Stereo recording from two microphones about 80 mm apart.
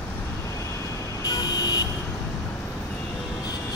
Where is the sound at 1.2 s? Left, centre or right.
Left.